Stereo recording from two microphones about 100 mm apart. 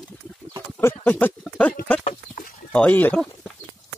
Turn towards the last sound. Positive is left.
turn(degrees=15)  # may be behind; listen again after turning